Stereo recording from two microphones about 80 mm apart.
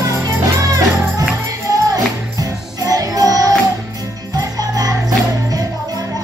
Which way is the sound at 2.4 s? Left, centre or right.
Right.